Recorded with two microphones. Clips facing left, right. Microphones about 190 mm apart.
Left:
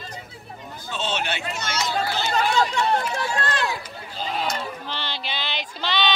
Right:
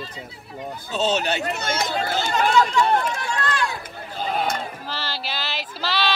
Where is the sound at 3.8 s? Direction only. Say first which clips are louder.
Right 2 dB; 50° right (ahead or behind).